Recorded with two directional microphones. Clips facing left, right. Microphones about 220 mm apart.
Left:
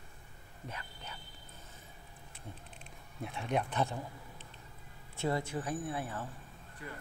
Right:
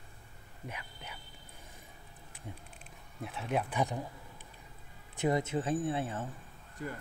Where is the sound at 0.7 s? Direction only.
10° right (ahead or behind).